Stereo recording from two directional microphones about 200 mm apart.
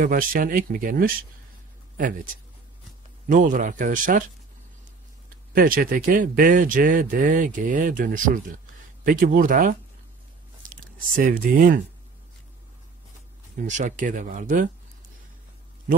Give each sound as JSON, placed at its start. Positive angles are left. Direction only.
{"t": 0.0, "sound": "speech", "side_deg": -45}
{"t": 3.3, "sound": "speech", "side_deg": -40}
{"t": 5.5, "sound": "speech", "side_deg": -45}
{"t": 13.6, "sound": "speech", "side_deg": -40}